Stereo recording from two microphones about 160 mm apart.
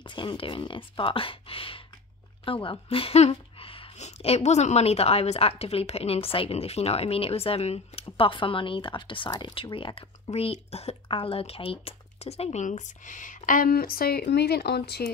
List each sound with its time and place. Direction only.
0.0 s a woman's voice: 30° left (ahead or behind); by 15.0 s 85° left